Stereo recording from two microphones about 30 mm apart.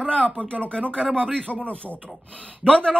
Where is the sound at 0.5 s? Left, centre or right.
Left.